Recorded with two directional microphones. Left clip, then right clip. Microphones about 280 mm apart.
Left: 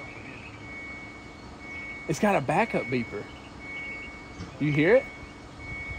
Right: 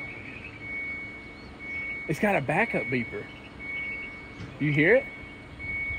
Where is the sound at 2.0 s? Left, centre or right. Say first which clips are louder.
Left 2 dB; centre.